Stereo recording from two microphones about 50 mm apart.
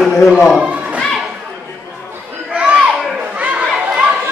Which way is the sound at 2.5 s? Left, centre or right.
Right.